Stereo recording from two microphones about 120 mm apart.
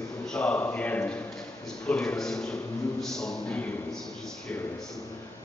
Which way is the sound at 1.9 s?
5° left (ahead or behind).